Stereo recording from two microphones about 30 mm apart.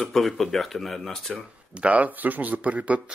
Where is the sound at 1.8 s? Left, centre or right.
Right.